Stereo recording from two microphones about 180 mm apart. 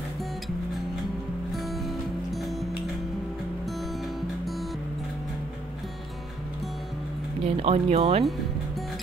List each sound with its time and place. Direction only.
2.3 s music: centre (ahead or behind)
7.4 s speech: 35° right (ahead or behind)